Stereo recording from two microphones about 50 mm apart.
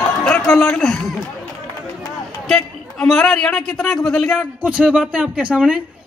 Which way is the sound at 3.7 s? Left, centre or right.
Centre.